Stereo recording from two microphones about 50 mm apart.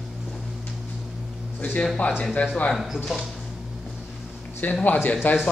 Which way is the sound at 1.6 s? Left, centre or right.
Left.